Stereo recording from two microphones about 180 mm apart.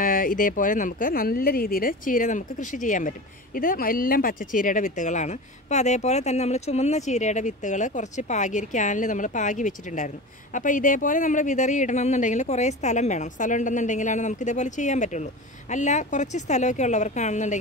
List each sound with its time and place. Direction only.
0.0 s speech: 50° left (ahead or behind)